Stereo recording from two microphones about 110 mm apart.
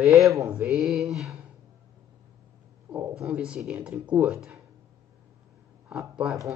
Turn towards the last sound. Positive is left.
turn(degrees=-5)  # may be behind; listen again after turning